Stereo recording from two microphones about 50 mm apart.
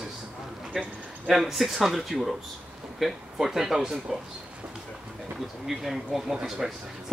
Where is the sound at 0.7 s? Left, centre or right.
Right.